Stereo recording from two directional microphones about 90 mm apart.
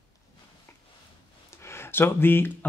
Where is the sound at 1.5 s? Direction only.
30° left (ahead or behind).